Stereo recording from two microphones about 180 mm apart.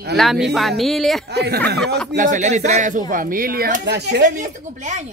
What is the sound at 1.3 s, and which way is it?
Speech, 70° right (ahead or behind).